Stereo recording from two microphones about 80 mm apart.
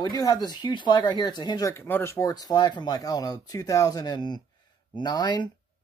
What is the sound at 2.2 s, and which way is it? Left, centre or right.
Speech, left.